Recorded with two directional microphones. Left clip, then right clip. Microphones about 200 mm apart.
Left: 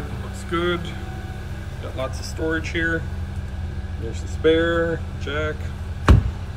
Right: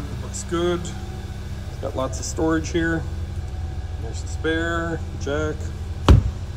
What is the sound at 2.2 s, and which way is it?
Speech, 15° right (ahead or behind).